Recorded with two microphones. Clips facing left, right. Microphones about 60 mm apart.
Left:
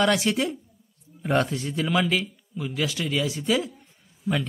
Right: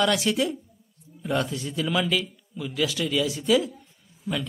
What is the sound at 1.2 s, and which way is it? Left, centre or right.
Speech, left.